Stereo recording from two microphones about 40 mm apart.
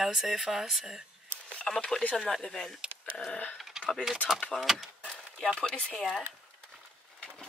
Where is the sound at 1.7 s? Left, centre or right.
Centre.